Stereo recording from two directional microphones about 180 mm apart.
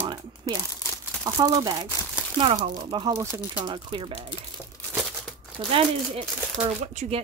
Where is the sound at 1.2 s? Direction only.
20° right (ahead or behind).